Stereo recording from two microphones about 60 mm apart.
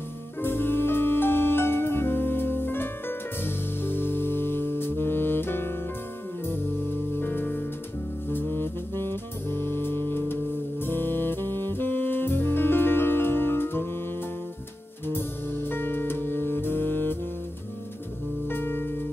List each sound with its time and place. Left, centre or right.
0.4 s music: left
7.2 s music: left
8.3 s saxophone: left
15.4 s music: left
18.5 s music: left